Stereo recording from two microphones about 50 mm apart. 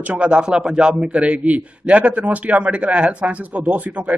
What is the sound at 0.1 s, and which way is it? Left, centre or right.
A man's voice, right.